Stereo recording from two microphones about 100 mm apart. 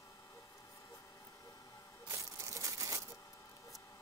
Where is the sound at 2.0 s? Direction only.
35° right (ahead or behind).